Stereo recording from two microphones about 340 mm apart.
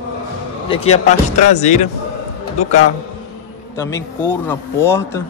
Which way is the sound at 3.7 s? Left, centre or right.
Centre.